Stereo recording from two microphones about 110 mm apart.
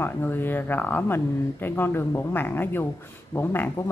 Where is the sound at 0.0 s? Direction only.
20° left (ahead or behind).